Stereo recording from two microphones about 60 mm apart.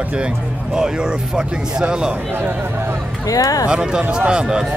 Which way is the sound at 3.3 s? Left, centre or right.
Left.